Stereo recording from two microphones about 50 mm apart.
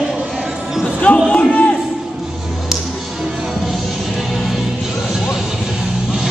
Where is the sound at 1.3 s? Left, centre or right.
Left.